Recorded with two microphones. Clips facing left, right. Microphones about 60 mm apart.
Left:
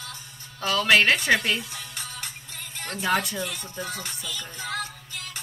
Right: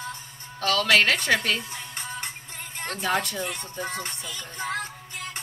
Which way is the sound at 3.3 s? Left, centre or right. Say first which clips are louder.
Even; right.